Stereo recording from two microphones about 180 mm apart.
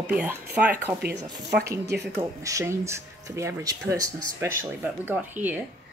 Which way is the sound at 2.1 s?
15° right (ahead or behind).